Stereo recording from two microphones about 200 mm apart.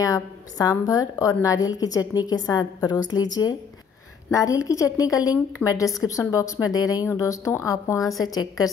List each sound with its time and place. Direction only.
0.0 s a woman's voice: 20° left (ahead or behind)